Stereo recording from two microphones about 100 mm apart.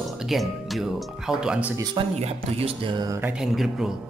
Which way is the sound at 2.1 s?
80° right.